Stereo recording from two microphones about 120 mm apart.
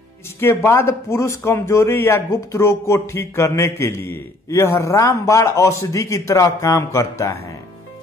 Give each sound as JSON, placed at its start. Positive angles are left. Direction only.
{"t": 0.7, "sound": "speech", "side_deg": 25}